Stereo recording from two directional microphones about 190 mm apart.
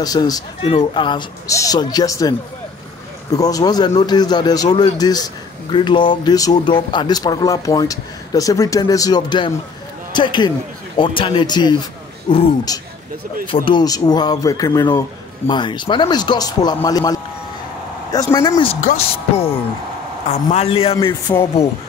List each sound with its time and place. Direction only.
0.0 s a man's voice: 20° left (ahead or behind)
0.6 s a man's voice: 30° left (ahead or behind)
18.3 s speech: 15° left (ahead or behind)
18.9 s music: 45° left (ahead or behind)
20.2 s a man's voice: 35° left (ahead or behind)